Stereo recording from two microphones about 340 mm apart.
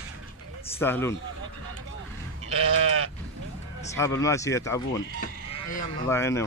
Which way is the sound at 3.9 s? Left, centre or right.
Centre.